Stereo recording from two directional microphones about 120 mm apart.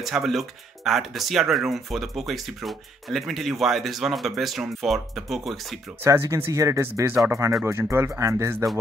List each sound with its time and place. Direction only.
0.0 s speech: centre (ahead or behind)
6.0 s speech: 25° right (ahead or behind)